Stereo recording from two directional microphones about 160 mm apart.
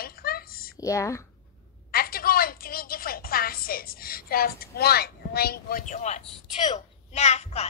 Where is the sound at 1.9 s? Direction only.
70° left (ahead or behind); by 6.2 s 45° left (ahead or behind).